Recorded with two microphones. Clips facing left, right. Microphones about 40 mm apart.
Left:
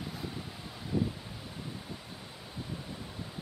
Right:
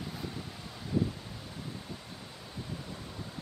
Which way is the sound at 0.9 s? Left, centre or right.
Centre.